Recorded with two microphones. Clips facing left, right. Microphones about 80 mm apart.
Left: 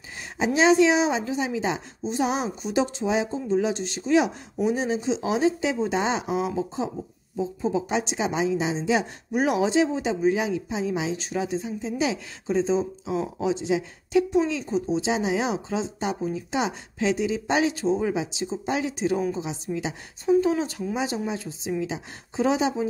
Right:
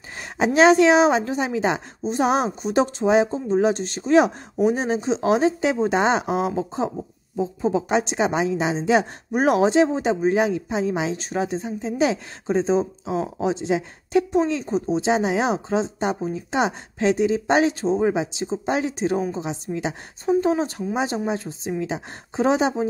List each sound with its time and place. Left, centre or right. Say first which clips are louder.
0.2 s a woman's voice: right 5 dB; right
20.2 s a woman's voice: right 1 dB; right